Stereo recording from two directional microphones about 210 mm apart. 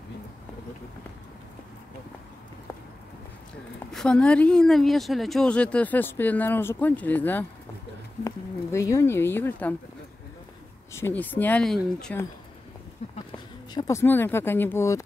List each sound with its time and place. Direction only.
3.9 s speech: 5° left (ahead or behind)
8.7 s speech: 15° left (ahead or behind)
10.9 s speech: 10° left (ahead or behind)
13.0 s a sound: 30° left (ahead or behind)
13.7 s speech: 15° left (ahead or behind)